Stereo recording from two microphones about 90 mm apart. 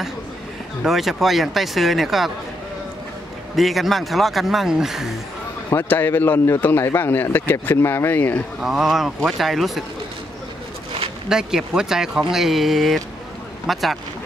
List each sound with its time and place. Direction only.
0.8 s speech: centre (ahead or behind)
3.5 s speech: centre (ahead or behind)
5.7 s speech: 25° left (ahead or behind)
8.5 s speech: 5° right (ahead or behind)
11.2 s speech: 5° right (ahead or behind)